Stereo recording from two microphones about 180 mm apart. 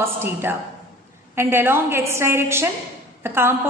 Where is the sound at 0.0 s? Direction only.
15° right (ahead or behind).